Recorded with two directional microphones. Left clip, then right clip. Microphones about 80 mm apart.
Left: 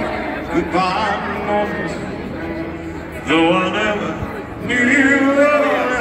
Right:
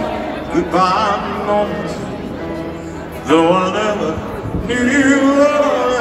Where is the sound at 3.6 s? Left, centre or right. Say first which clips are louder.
Right 1 dB; right.